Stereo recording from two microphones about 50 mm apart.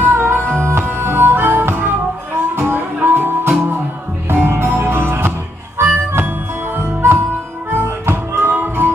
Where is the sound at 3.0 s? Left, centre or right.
Right.